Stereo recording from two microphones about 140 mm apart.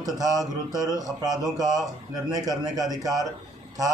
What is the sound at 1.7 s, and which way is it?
Speech, centre (ahead or behind).